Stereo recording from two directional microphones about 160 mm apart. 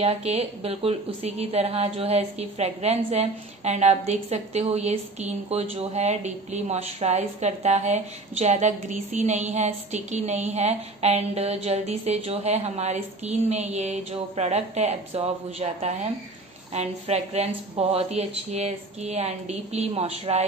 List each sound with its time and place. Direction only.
0.0 s a woman's voice: 40° right (ahead or behind)